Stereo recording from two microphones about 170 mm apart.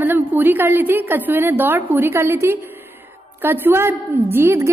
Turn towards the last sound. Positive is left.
turn(degrees=-15)  # may be behind; listen again after turning